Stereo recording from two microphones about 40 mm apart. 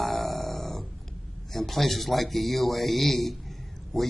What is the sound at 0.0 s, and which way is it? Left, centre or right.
Grunt, centre.